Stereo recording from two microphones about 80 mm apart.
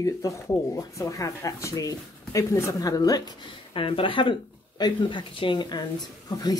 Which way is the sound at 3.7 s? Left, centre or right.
Left.